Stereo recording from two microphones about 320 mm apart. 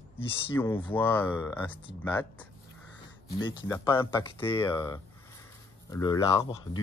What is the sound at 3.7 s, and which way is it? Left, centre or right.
Speech, centre.